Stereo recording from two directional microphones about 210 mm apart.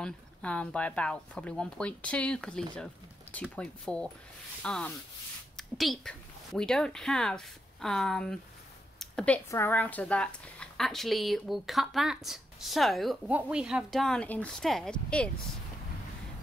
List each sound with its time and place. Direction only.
0.0 s speech: 5° left (ahead or behind)